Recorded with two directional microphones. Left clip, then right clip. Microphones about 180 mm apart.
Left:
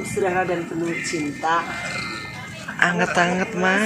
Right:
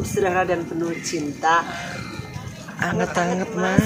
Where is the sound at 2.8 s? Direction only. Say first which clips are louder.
Left 4 dB; 5° left (ahead or behind).